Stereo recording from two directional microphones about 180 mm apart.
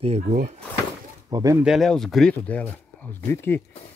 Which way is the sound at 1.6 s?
Centre (ahead or behind).